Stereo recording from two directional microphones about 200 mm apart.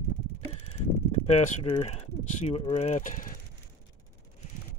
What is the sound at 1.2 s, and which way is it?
Speech, 35° left (ahead or behind).